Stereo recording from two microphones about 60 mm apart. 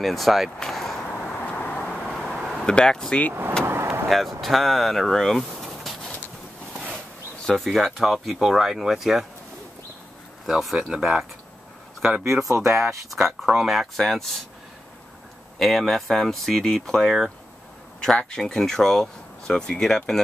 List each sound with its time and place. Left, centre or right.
0.0 s speech: centre
0.6 s a sound: centre
1.1 s vehicle: left; by 2.7 s centre
2.7 s speech: centre
3.6 s vehicle: right
4.1 s speech: centre
7.4 s speech: centre
10.6 s speech: centre
12.3 s speech: centre
15.6 s speech: centre